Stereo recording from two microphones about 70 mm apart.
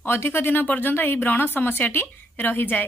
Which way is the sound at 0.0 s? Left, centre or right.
Left.